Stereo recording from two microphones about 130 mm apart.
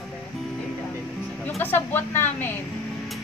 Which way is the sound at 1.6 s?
15° left (ahead or behind).